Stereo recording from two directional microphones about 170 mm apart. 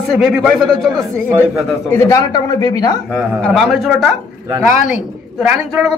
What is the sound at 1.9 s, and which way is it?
Speech, 15° left (ahead or behind).